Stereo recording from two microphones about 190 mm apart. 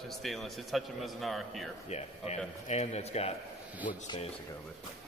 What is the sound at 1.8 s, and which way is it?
A man's voice, 35° left (ahead or behind).